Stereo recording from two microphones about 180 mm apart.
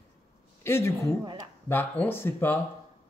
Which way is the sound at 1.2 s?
25° right (ahead or behind).